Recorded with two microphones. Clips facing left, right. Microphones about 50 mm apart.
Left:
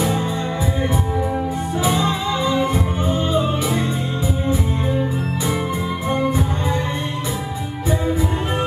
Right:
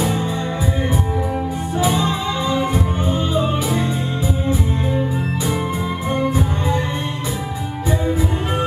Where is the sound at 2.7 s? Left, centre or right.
Right.